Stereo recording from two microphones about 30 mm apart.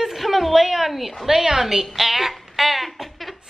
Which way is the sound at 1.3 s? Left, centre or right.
Centre.